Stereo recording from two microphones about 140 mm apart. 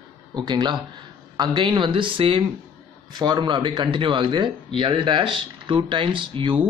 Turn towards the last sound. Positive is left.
turn(degrees=-40)  # may be behind; listen again after turning